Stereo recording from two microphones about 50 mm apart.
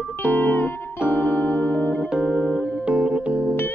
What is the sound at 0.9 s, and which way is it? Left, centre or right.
Music, right.